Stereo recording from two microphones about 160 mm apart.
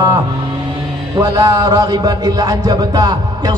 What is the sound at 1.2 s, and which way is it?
Music, 25° right (ahead or behind).